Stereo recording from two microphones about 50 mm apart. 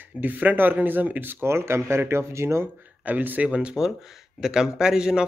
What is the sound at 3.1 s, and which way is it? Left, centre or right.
Speech, right.